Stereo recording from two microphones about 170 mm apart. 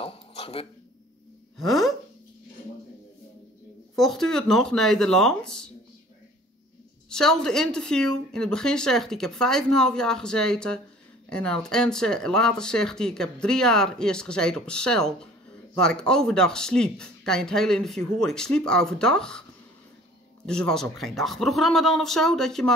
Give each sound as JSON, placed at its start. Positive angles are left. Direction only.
{"t": 0.0, "sound": "a sound", "side_deg": 35}
{"t": 1.6, "sound": "speech", "side_deg": 0}
{"t": 3.9, "sound": "speech", "side_deg": 0}
{"t": 7.1, "sound": "speech", "side_deg": 5}
{"t": 20.4, "sound": "speech", "side_deg": 5}